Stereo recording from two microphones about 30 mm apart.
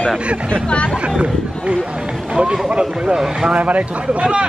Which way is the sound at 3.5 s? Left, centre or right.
Right.